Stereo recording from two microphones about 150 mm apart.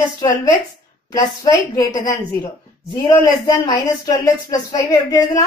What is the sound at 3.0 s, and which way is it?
Speech, 25° left (ahead or behind).